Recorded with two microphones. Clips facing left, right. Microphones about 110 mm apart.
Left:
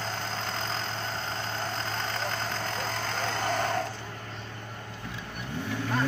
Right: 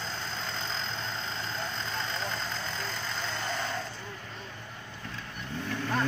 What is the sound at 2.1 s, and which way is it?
Vehicle, 60° left (ahead or behind).